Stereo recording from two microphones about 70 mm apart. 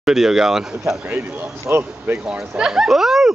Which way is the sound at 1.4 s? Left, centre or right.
Right.